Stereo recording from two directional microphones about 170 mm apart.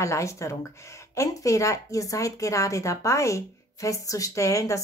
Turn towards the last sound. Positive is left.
turn(degrees=20)  # may be behind; listen again after turning